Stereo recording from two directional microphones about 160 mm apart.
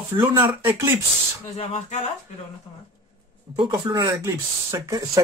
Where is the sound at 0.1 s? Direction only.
15° right (ahead or behind).